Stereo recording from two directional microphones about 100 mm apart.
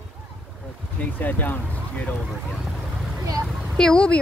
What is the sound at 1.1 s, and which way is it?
Speech, 15° left (ahead or behind).